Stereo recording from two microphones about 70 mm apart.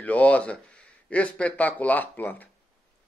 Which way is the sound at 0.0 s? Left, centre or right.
Left.